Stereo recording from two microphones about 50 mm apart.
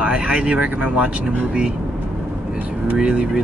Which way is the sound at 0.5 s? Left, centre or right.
Right.